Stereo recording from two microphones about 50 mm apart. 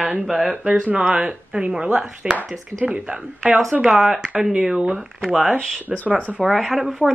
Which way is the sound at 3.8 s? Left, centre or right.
Centre.